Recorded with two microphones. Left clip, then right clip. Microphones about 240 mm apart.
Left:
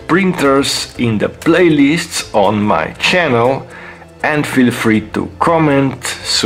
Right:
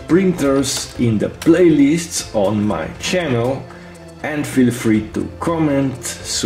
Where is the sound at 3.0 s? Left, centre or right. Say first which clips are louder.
Left 6 dB; left.